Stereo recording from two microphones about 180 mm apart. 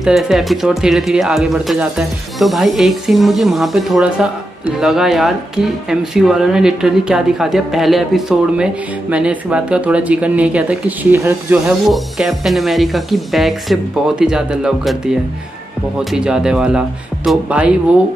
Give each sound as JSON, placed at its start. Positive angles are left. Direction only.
{"t": 0.0, "sound": "speech", "side_deg": 0}